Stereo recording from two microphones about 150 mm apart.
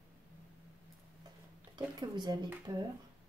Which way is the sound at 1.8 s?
25° right (ahead or behind).